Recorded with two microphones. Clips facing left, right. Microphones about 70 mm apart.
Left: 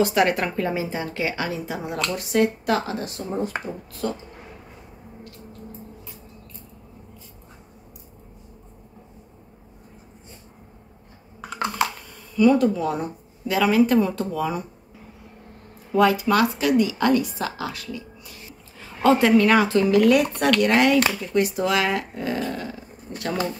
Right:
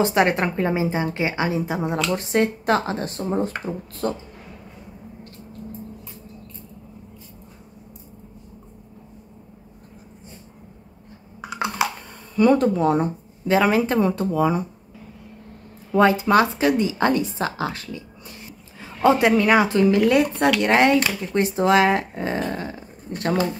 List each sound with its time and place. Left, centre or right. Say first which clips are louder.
0.0 s a woman's voice: right 1 dB; right
11.5 s computer keyboard: right 1 dB; centre
12.4 s speech: right 1 dB; right
16.0 s a woman's voice: right 2 dB; right
19.0 s a woman's voice: even; right
20.3 s speech: right 1 dB; centre
20.6 s a woman's voice: right 1 dB; right